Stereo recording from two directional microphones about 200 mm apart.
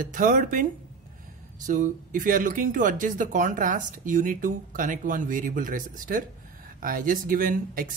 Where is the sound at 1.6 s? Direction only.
40° right (ahead or behind).